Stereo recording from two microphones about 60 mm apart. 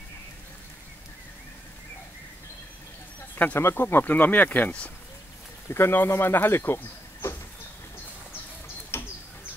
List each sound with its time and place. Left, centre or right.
3.5 s speech: left
5.7 s speech: left
8.9 s bird: left